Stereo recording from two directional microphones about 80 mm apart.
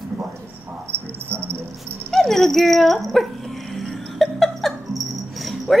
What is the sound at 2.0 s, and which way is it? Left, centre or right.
Speech, centre.